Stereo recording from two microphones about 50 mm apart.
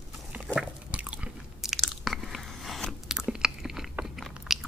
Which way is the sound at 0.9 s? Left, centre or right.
Right.